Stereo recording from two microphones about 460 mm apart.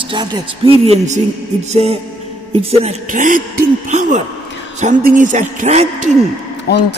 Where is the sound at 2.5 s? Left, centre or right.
Centre.